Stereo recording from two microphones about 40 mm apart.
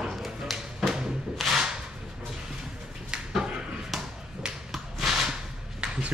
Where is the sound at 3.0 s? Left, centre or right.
Right.